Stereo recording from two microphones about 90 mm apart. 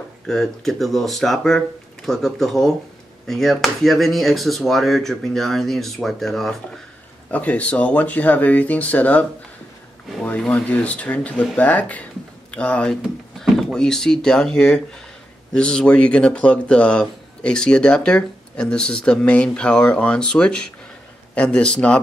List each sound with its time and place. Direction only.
0.3 s speech: 5° left (ahead or behind)
7.2 s speech: 15° left (ahead or behind)
10.5 s speech: 15° left (ahead or behind)